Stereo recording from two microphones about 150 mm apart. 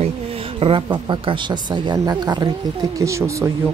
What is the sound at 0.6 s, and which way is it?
Speech, 35° right (ahead or behind).